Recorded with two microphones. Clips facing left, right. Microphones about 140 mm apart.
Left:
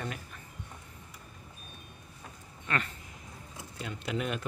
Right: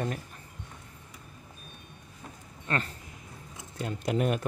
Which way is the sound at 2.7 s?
35° right (ahead or behind).